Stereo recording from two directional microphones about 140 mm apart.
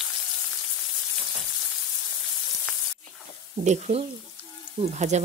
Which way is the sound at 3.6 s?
55° right (ahead or behind).